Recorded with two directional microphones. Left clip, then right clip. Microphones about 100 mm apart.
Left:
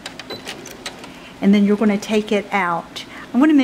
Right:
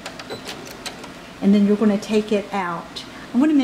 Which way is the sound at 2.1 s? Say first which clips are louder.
Left 2 dB; 45° left (ahead or behind).